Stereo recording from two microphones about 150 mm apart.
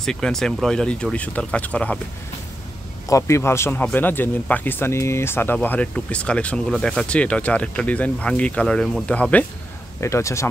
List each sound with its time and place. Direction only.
0.0 s speech: 5° left (ahead or behind)
3.1 s speech: 20° left (ahead or behind)